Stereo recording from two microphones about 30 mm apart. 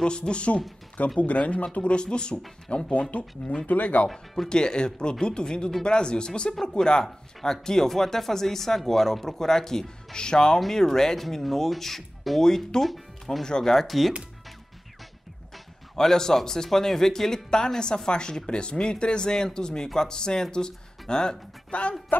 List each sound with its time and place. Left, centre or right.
0.0 s speech: left
1.2 s speech: left
2.9 s speech: left
3.6 s speech: left
4.5 s speech: left
10.1 s speech: left
10.7 s speech: centre
11.4 s speech: centre
12.8 s speech: centre
13.4 s speech: centre
13.7 s speech: centre
16.0 s speech: centre
21.6 s speech: left